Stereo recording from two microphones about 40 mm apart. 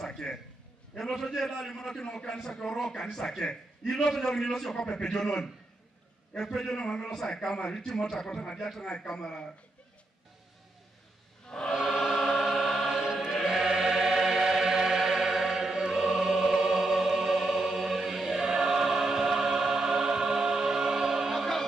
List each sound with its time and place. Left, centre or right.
0.0 s a sound: centre
0.9 s a man's voice: centre
6.8 s a man's voice: left
7.2 s a man's voice: centre
9.1 s a man's voice: centre
11.4 s choir: left
11.7 s choir: centre
13.6 s music: centre
17.5 s choir: centre
21.4 s choir: centre